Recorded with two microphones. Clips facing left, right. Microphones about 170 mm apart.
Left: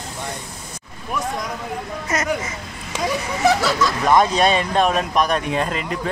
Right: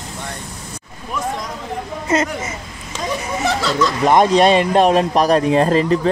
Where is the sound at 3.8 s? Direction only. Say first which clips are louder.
Right 3 dB; 25° right (ahead or behind).